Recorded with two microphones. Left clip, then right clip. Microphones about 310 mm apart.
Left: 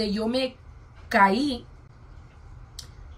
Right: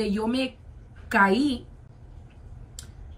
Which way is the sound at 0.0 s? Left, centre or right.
Right.